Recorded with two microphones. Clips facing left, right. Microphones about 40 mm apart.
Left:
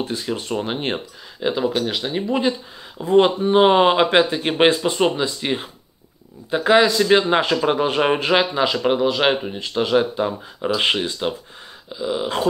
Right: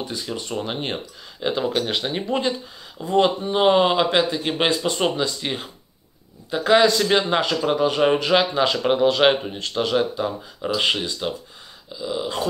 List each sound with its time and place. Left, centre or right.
0.1 s speech: centre
1.5 s speech: centre
3.2 s a man's voice: left
4.9 s a man's voice: centre
8.5 s speech: centre
9.6 s a man's voice: centre